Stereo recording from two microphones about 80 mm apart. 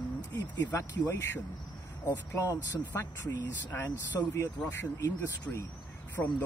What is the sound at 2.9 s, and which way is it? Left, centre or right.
Speech, left.